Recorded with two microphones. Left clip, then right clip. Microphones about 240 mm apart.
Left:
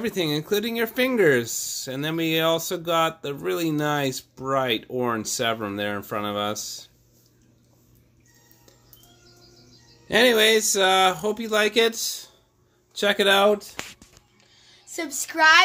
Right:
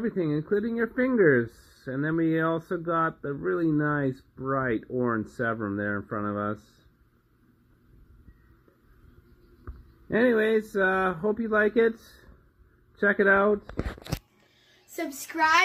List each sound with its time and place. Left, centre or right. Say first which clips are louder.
0.0 s speech: left 3 dB; left
10.0 s speech: left 6 dB; left
13.0 s speech: left 3 dB; left
15.0 s speech: left 4 dB; left